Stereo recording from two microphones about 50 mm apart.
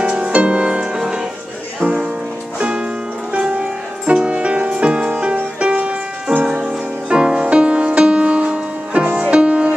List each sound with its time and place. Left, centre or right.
0.0 s music: right
4.0 s music: right